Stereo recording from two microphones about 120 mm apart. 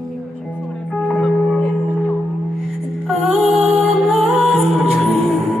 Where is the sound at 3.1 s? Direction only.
Centre (ahead or behind).